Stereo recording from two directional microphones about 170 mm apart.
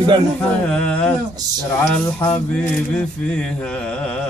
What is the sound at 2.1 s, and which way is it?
Mantra, 15° left (ahead or behind).